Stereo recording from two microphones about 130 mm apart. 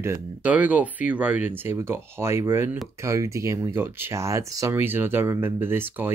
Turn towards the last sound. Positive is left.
turn(degrees=-15)  # may be behind; listen again after turning